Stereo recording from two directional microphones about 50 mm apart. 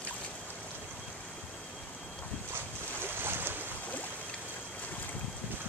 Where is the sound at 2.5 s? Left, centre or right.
Right.